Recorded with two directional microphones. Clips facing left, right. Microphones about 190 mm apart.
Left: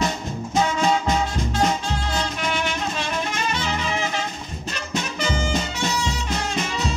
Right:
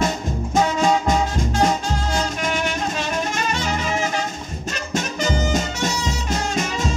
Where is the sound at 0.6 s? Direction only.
45° right (ahead or behind).